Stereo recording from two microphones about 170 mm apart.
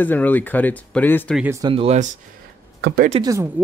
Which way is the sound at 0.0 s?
10° left (ahead or behind).